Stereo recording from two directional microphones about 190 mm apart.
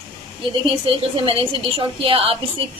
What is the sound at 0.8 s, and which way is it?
A woman's voice, 30° right (ahead or behind).